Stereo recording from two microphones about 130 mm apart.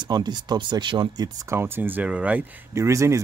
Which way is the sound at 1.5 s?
15° right (ahead or behind).